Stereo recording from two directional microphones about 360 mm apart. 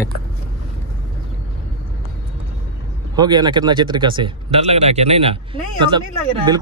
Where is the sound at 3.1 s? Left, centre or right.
Centre.